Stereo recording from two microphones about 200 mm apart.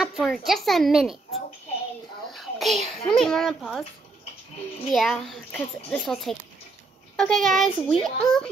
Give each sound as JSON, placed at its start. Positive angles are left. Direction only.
{"t": 0.0, "sound": "a child's voice", "side_deg": 0}
{"t": 2.3, "sound": "a child's voice", "side_deg": 0}
{"t": 4.9, "sound": "a child's voice", "side_deg": 0}